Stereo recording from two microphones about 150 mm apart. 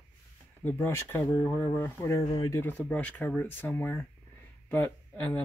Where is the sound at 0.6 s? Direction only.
15° left (ahead or behind).